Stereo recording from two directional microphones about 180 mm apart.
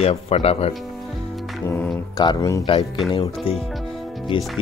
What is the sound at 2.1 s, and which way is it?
Speech, 20° left (ahead or behind).